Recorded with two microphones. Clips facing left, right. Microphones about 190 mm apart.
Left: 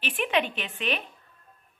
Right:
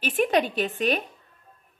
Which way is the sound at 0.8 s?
45° right (ahead or behind).